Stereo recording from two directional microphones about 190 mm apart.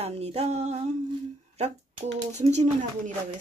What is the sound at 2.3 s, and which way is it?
Speech, 35° right (ahead or behind).